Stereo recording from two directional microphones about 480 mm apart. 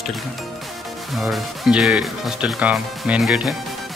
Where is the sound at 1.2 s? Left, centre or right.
Centre.